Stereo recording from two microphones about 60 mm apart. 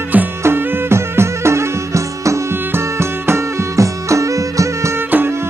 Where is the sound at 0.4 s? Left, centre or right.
Right.